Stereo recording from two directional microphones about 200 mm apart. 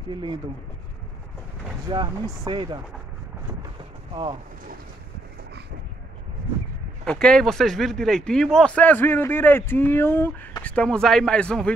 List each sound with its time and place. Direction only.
1.9 s speech: 25° right (ahead or behind)
4.1 s speech: 25° right (ahead or behind)
7.1 s speech: 5° left (ahead or behind)